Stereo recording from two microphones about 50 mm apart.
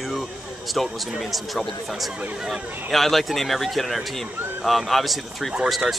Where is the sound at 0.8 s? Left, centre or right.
Centre.